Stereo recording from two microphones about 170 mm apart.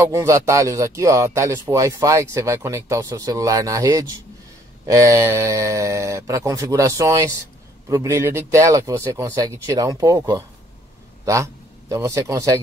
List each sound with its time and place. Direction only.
0.0 s a man's voice: 15° right (ahead or behind)